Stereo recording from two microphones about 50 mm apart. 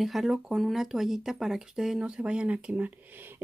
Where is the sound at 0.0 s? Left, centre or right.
Centre.